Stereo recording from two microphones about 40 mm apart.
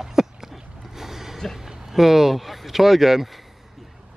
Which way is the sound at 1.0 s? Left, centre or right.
Centre.